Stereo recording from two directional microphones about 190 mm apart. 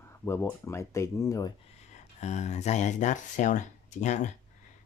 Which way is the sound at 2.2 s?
35° left (ahead or behind).